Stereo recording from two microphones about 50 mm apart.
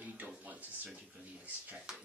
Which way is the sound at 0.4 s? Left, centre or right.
Right.